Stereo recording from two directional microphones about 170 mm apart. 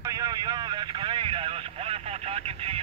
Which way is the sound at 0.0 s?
20° right (ahead or behind).